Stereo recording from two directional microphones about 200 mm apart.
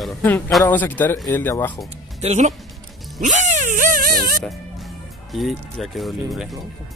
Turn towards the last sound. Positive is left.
turn(degrees=0)  # may be behind; listen again after turning